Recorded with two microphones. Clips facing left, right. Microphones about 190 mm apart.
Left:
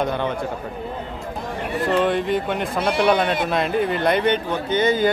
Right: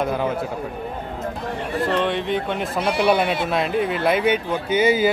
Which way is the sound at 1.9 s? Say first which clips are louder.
Left 4 dB; 5° left (ahead or behind).